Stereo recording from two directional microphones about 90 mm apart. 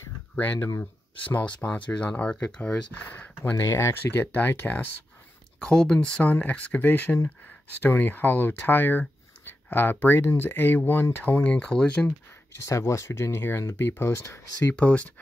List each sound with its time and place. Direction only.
1.3 s speech: 15° left (ahead or behind)
3.5 s speech: 35° left (ahead or behind); by 4.8 s 20° left (ahead or behind)
5.6 s speech: 10° left (ahead or behind)
12.6 s speech: 35° left (ahead or behind)
14.8 s speech: 15° left (ahead or behind)